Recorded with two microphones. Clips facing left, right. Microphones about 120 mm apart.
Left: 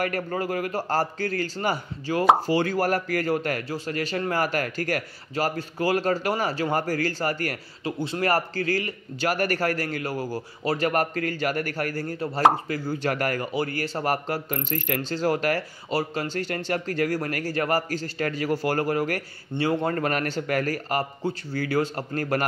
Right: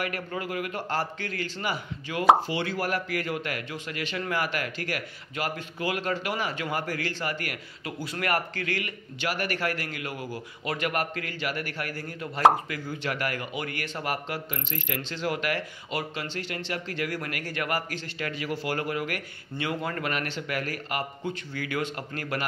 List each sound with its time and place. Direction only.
0.0 s speech: 40° left (ahead or behind)